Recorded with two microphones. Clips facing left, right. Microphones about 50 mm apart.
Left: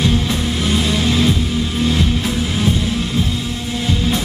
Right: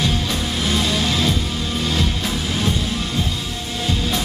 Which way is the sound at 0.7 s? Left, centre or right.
Centre.